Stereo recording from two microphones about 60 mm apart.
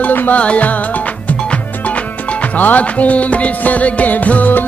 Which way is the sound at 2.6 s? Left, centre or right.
Left.